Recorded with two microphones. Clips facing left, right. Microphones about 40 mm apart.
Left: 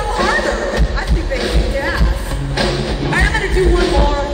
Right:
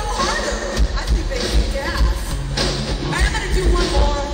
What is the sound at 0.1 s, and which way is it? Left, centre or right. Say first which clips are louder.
Music: left 5 dB; left.